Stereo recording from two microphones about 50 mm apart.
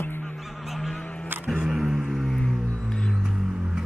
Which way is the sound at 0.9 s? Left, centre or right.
Left.